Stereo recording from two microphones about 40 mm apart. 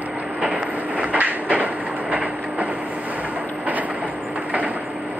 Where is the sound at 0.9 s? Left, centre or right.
Right.